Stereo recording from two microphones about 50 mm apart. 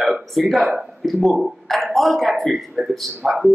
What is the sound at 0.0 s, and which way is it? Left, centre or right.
A woman's voice, centre.